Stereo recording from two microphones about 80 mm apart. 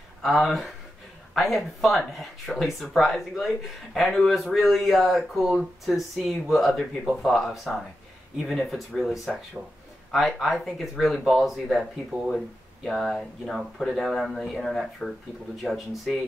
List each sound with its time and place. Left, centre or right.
0.2 s speech: centre